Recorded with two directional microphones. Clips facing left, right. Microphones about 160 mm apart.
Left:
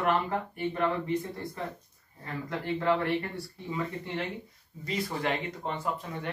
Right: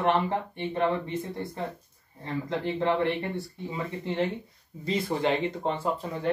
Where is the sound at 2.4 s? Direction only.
20° right (ahead or behind).